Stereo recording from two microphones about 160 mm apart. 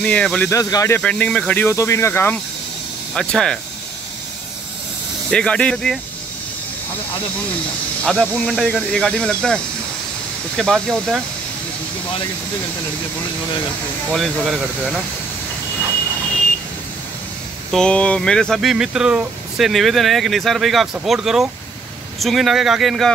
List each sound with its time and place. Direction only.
0.0 s speech: 5° left (ahead or behind)
0.5 s speech: 20° left (ahead or behind)
3.2 s speech: 5° left (ahead or behind)
5.3 s speech: 5° left (ahead or behind)
8.0 s speech: 5° left (ahead or behind)
14.1 s speech: centre (ahead or behind)
17.6 s speech: 5° left (ahead or behind)